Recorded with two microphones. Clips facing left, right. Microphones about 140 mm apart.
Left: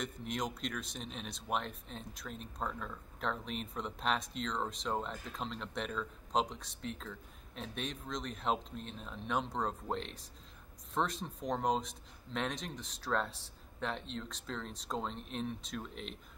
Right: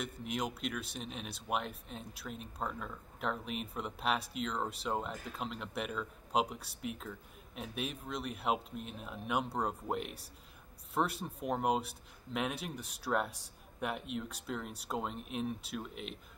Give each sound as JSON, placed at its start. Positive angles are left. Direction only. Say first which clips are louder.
{"t": 0.0, "sound": "speech", "louder": "right 1 dB", "side_deg": -5}